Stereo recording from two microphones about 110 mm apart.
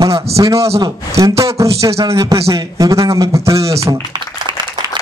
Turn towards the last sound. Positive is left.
turn(degrees=-30)  # may be behind; listen again after turning